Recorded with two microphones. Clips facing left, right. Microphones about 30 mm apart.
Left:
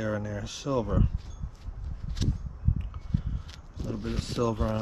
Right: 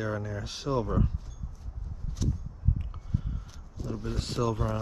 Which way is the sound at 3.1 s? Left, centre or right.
Left.